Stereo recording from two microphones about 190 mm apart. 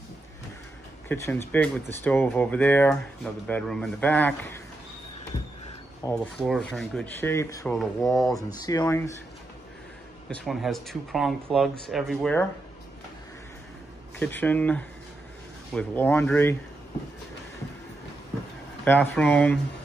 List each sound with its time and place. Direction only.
1.0 s speech: 10° left (ahead or behind)
6.1 s speech: centre (ahead or behind)
7.2 s speech: 15° left (ahead or behind)
7.8 s speech: centre (ahead or behind)
8.6 s speech: 15° left (ahead or behind)
10.3 s speech: centre (ahead or behind)
14.2 s speech: 10° left (ahead or behind)
18.9 s speech: 10° left (ahead or behind)